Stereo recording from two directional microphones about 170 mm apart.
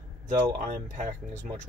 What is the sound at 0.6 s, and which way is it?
Speech, 50° right (ahead or behind).